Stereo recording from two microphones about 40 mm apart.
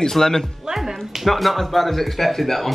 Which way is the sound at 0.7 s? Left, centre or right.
Centre.